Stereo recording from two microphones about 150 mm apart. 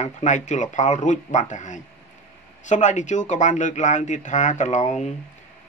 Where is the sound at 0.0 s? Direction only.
50° left (ahead or behind).